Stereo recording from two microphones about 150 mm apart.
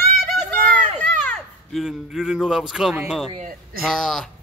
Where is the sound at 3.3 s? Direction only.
65° right (ahead or behind).